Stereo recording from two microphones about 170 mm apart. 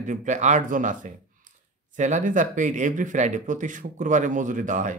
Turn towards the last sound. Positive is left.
turn(degrees=-50)  # may be behind; listen again after turning